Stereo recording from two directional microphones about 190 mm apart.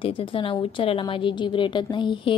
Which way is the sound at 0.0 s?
25° left (ahead or behind).